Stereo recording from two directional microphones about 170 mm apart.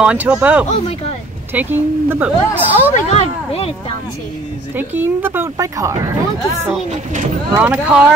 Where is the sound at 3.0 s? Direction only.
35° left (ahead or behind).